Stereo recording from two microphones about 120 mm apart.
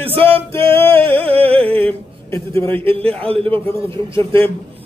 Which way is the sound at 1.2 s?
50° right (ahead or behind).